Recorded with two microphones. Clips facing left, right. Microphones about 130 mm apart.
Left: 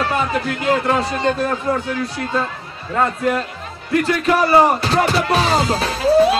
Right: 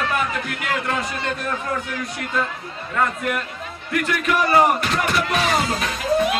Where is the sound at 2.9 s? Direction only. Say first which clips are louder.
Left 5 dB; 30° left (ahead or behind).